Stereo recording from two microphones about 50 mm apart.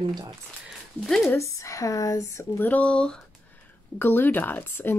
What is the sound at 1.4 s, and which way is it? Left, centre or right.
Speech, left.